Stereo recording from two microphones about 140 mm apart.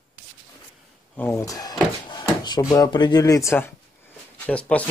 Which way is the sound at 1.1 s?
20° left (ahead or behind).